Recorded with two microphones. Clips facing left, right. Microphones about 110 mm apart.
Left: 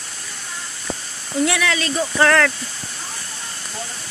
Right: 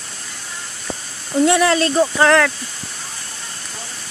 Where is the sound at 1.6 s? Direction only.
40° right (ahead or behind).